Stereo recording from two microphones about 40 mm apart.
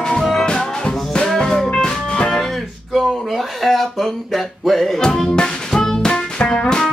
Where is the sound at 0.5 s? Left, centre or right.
Left.